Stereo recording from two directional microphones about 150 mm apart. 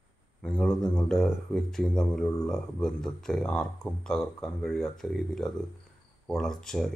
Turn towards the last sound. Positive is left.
turn(degrees=0)  # may be behind; listen again after turning